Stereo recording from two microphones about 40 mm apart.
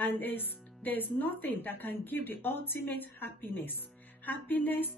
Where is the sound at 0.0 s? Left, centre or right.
Left.